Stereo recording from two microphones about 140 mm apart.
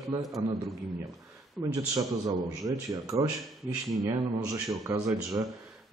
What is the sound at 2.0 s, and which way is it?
A man's voice, 25° right (ahead or behind).